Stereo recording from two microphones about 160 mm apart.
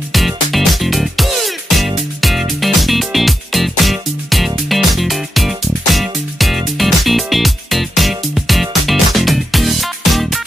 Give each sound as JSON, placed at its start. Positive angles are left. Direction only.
{"t": 0.1, "sound": "music", "side_deg": 0}